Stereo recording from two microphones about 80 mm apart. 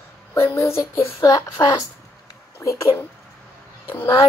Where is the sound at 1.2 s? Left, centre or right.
Left.